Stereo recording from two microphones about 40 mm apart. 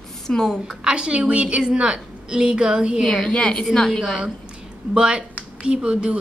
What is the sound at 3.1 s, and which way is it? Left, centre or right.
Speech, left.